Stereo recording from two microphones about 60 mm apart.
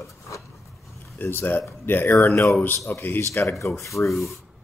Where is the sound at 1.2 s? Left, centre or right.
Left.